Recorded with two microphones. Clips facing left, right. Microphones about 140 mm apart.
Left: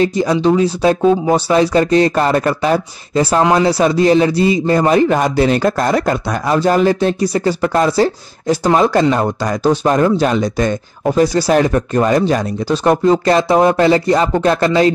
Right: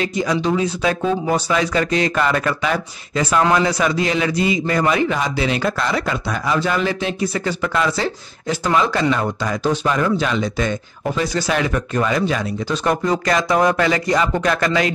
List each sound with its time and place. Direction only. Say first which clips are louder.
0.0 s speech: left 6 dB; 35° left (ahead or behind)